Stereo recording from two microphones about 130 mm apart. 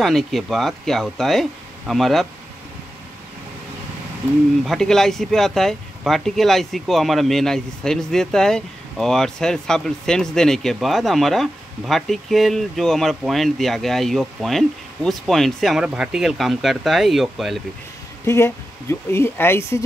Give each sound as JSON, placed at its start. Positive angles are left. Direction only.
{"t": 0.0, "sound": "speech", "side_deg": 0}
{"t": 4.6, "sound": "speech", "side_deg": 5}
{"t": 18.2, "sound": "speech", "side_deg": 20}